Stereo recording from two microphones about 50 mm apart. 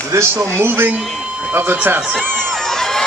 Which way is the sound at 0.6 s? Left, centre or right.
Right.